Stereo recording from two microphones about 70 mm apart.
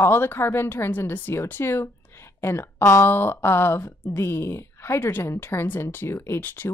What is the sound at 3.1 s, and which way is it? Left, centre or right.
Speech, left.